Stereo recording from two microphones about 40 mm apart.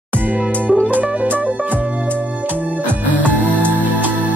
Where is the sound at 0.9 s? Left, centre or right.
Right.